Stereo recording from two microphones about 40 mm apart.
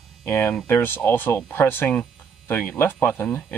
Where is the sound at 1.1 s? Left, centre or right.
Left.